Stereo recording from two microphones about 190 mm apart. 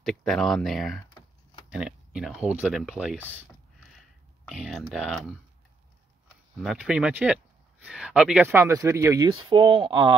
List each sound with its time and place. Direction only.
0.0 s speech: centre (ahead or behind)
4.5 s speech: centre (ahead or behind)
6.2 s speech: 5° right (ahead or behind); by 10.1 s 25° right (ahead or behind)